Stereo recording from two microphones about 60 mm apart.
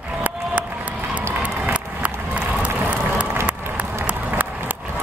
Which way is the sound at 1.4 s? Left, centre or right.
Right.